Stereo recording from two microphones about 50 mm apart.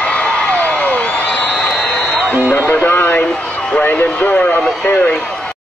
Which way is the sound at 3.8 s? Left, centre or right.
Left.